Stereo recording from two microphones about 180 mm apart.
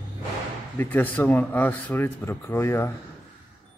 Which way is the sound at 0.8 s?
10° left (ahead or behind).